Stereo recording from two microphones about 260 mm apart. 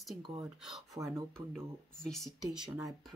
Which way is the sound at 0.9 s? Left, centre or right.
Centre.